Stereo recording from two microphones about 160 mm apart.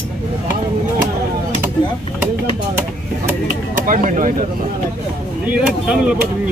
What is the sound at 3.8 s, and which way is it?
Speech, 55° right (ahead or behind).